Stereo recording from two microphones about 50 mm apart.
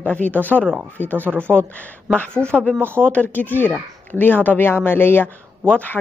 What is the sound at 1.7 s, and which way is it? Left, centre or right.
Speech, left.